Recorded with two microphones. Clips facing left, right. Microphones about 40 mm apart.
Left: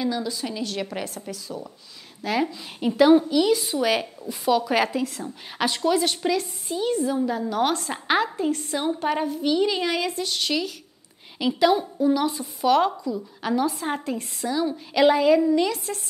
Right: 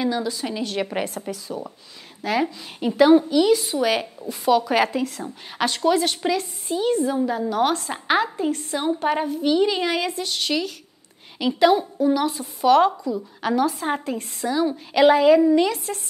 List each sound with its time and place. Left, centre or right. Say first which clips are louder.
0.0 s a woman's voice: right 2 dB; right
2.2 s a woman's voice: right 2 dB; centre
13.4 s a woman's voice: right 3 dB; right
13.7 s a woman's voice: right 2 dB; centre